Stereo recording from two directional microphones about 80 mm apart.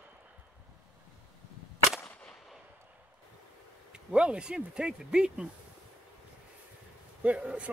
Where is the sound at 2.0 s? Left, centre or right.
Centre.